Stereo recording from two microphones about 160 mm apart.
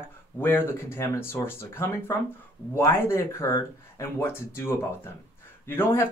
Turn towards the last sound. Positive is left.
turn(degrees=15)  # may be behind; listen again after turning